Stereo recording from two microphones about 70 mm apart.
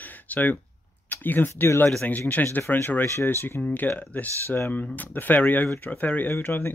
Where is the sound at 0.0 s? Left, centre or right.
Left.